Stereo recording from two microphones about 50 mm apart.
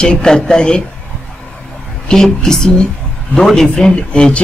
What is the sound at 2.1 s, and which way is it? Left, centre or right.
Speech, centre.